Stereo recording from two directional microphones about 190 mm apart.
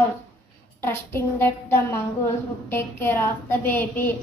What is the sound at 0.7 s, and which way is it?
Child singing, 10° left (ahead or behind).